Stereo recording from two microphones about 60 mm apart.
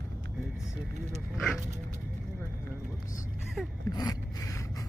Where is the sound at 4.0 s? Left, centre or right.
Left.